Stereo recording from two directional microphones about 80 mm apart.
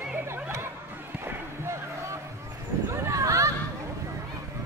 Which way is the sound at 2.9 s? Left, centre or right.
Right.